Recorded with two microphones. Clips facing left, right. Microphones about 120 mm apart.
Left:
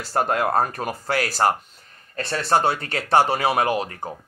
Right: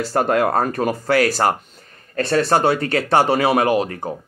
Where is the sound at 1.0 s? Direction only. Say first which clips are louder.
Right 7 dB; 85° right.